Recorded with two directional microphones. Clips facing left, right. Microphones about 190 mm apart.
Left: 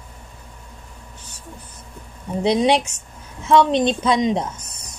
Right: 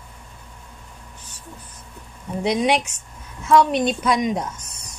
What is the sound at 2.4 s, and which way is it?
A child's voice, 30° left (ahead or behind).